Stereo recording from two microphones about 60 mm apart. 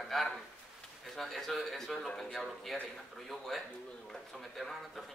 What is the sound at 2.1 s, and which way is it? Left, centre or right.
Speech, centre.